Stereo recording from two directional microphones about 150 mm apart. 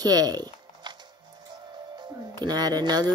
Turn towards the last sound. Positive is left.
turn(degrees=-25)  # may be behind; listen again after turning